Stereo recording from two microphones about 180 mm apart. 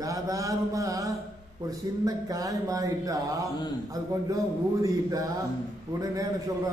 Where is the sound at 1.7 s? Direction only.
20° right (ahead or behind).